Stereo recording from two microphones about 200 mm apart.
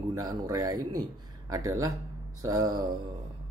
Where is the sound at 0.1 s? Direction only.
20° right (ahead or behind).